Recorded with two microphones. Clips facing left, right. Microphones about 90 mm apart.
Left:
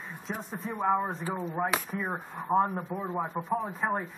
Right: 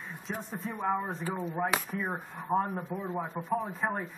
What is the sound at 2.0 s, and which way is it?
Speech, 10° left (ahead or behind).